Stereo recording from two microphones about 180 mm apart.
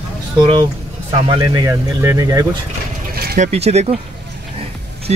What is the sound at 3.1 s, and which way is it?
Vehicle, 60° right (ahead or behind).